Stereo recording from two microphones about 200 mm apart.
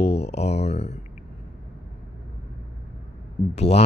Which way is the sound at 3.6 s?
30° left (ahead or behind).